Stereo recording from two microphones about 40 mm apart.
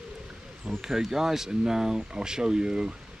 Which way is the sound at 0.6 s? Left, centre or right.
Centre.